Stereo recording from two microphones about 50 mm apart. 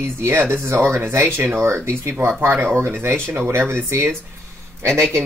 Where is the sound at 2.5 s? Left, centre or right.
Right.